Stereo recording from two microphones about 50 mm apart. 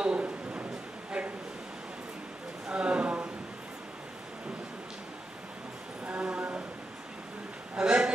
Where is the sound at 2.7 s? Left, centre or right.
Right.